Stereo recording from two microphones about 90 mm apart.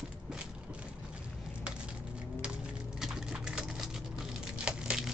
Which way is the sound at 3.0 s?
5° right (ahead or behind).